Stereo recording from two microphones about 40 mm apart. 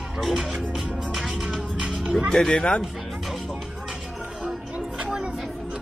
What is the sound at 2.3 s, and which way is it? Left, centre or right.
Speech, centre.